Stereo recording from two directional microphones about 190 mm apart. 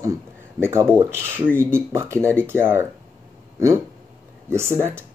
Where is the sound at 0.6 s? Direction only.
10° right (ahead or behind).